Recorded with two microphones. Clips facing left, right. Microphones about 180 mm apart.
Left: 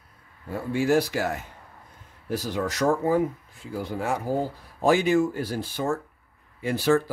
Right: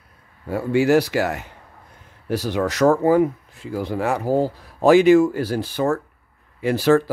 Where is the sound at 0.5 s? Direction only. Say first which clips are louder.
Right 6 dB; 75° right (ahead or behind).